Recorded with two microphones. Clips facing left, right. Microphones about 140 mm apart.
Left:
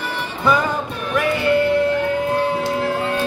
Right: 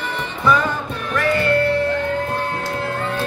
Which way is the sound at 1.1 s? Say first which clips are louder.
Even; 15° left (ahead or behind).